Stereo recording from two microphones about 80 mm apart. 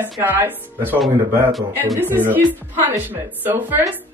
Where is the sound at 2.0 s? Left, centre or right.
Right.